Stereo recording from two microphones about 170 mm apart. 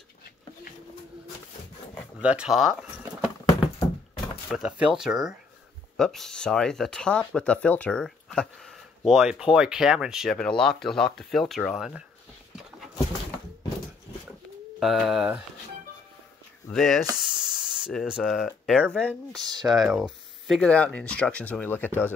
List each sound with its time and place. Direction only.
2.2 s speech: 5° right (ahead or behind)
4.5 s speech: 5° right (ahead or behind)
14.8 s speech: centre (ahead or behind)
16.7 s speech: centre (ahead or behind)
19.4 s speech: 25° right (ahead or behind)
19.7 s speech: centre (ahead or behind)